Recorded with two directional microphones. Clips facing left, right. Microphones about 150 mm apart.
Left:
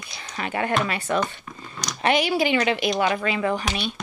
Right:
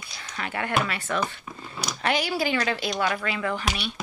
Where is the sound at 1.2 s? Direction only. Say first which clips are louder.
Left 3 dB; 5° right (ahead or behind).